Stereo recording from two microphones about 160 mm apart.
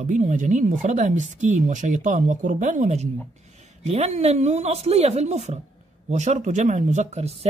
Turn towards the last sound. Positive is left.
turn(degrees=-45)  # may be behind; listen again after turning